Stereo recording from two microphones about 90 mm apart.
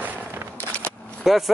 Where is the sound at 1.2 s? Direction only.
Centre (ahead or behind).